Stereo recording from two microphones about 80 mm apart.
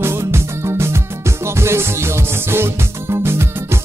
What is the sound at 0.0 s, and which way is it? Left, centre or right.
Music, right.